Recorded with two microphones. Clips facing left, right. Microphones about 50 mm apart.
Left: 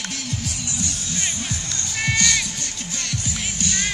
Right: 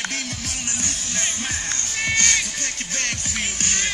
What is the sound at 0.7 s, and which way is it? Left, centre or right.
Music, right.